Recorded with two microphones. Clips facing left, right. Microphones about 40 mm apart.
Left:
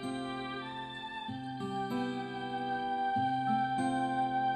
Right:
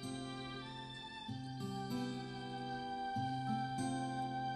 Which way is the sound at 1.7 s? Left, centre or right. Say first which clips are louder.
Left 8 dB; left.